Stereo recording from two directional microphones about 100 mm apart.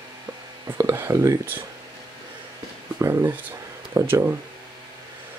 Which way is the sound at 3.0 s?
25° right (ahead or behind).